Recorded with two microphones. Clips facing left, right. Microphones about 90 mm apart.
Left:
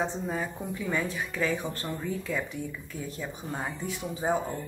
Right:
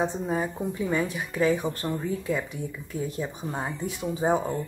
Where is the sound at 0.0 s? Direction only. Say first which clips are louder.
Right 4 dB; 20° right (ahead or behind).